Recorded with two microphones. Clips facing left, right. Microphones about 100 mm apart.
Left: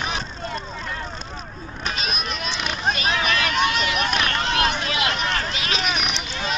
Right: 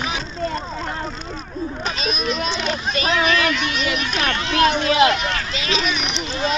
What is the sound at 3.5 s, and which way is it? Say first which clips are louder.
Speech: even; 40° left (ahead or behind).